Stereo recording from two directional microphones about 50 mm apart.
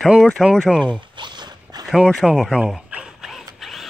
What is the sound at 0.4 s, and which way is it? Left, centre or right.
Speech, centre.